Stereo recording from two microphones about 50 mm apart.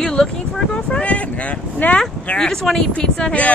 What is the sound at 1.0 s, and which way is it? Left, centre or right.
Speech, left.